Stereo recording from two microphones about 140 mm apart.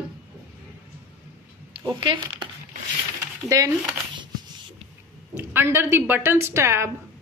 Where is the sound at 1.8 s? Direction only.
30° right (ahead or behind).